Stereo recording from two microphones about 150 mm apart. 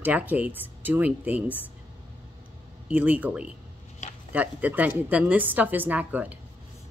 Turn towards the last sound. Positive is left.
turn(degrees=-10)  # may be behind; listen again after turning